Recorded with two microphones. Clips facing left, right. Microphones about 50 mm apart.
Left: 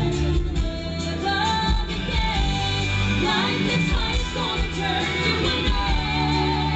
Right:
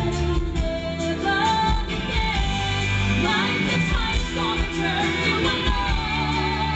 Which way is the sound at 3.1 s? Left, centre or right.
Right.